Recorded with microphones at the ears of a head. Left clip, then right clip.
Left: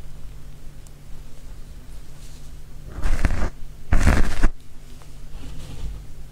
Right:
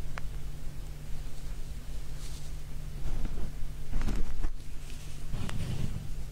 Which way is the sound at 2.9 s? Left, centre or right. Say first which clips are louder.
Left 17 dB; left.